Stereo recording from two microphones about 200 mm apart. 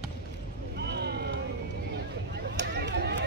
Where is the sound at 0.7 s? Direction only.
55° right (ahead or behind).